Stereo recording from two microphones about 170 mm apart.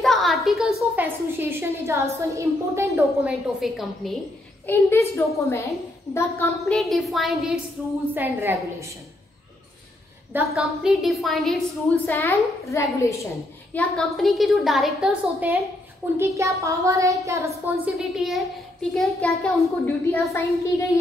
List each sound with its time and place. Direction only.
0.0 s a sound: centre (ahead or behind)
0.9 s a woman's voice: 15° right (ahead or behind)
3.6 s a woman's voice: centre (ahead or behind)
4.6 s a woman's voice: 15° left (ahead or behind)
6.6 s a woman's voice: centre (ahead or behind)
10.3 s a woman's voice: centre (ahead or behind)
12.1 s a woman's voice: 15° left (ahead or behind)
13.7 s a woman's voice: 5° left (ahead or behind)
16.2 s a woman's voice: 15° right (ahead or behind)
17.8 s a woman's voice: centre (ahead or behind)
19.6 s a woman's voice: 15° left (ahead or behind)